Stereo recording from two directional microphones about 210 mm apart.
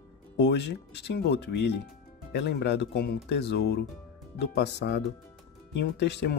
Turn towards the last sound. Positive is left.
turn(degrees=55)  # may be behind; listen again after turning